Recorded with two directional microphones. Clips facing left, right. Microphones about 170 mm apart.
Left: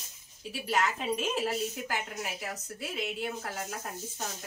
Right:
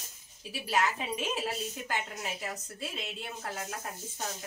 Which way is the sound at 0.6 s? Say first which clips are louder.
Left 1 dB; centre (ahead or behind).